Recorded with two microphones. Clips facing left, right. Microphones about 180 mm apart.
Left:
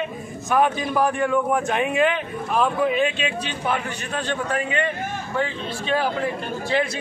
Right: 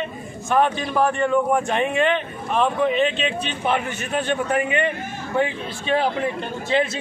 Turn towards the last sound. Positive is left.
turn(degrees=-20)  # may be behind; listen again after turning